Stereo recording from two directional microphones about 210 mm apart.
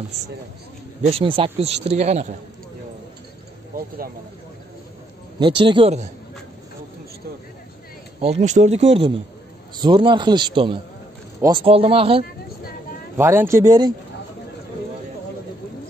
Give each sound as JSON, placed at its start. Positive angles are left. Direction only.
{"t": 1.0, "sound": "a man's voice", "side_deg": -25}
{"t": 5.4, "sound": "a man's voice", "side_deg": -25}
{"t": 8.2, "sound": "a man's voice", "side_deg": -30}
{"t": 13.2, "sound": "speech", "side_deg": -10}